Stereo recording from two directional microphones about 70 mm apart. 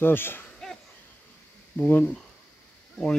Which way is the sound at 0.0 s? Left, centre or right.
Left.